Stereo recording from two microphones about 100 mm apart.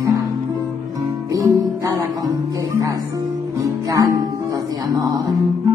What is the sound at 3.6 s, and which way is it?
Music, 35° right (ahead or behind).